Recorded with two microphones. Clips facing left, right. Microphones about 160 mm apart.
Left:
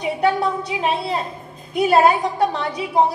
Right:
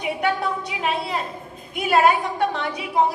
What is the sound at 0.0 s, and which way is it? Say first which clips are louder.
A woman's voice: left 4 dB; 35° left (ahead or behind).